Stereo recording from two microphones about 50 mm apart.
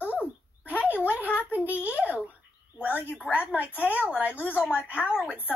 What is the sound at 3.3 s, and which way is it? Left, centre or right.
A woman's voice, left.